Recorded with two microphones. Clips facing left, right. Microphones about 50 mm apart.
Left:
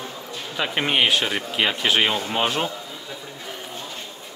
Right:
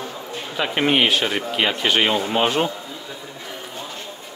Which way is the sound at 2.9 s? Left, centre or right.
Centre.